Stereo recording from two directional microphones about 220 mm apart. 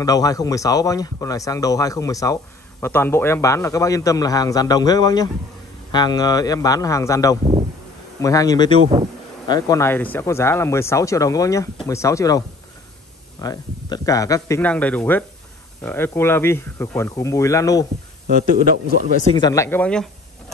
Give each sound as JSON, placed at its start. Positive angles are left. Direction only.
{"t": 0.0, "sound": "speech", "side_deg": 15}
{"t": 18.2, "sound": "a man's voice", "side_deg": -40}
{"t": 19.3, "sound": "speech", "side_deg": 15}